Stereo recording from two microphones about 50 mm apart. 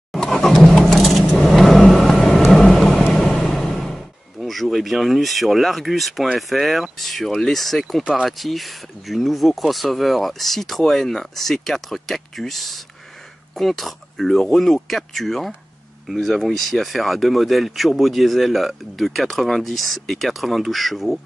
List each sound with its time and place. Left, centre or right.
0.1 s vehicle: centre
3.1 s a sound: centre
6.3 s speech: centre
8.0 s speech: centre
8.3 s speech: centre